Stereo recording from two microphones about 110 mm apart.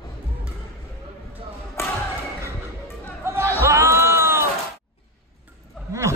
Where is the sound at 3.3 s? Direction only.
25° right (ahead or behind).